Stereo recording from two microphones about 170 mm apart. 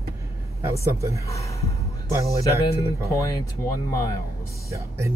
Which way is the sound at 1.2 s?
20° left (ahead or behind).